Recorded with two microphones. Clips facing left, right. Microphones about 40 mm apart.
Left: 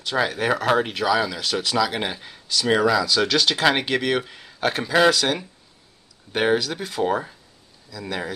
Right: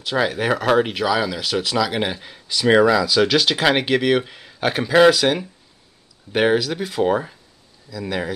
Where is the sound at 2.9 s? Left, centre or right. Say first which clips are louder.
Right 3 dB; centre.